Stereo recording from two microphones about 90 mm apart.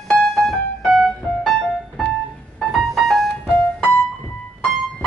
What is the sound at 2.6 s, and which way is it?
Music, centre (ahead or behind).